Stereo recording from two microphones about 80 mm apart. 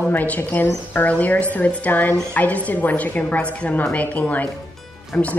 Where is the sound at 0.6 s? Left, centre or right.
Left.